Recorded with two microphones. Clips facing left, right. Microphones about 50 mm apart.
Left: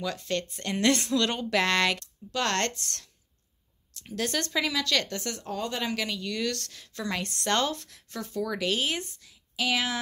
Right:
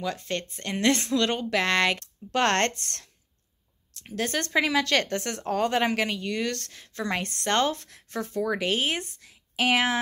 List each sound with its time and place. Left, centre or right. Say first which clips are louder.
0.0 s speech: even; right
2.0 s speech: right 5 dB; right